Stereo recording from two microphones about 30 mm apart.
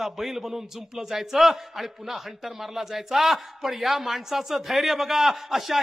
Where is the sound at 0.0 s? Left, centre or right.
Centre.